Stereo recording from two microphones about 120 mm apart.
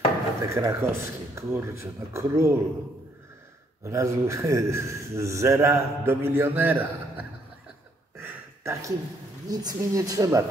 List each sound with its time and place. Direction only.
0.4 s a man's voice: 25° right (ahead or behind)
3.8 s a man's voice: 25° right (ahead or behind)
8.2 s a sound: 20° right (ahead or behind)
9.5 s a man's voice: 35° right (ahead or behind)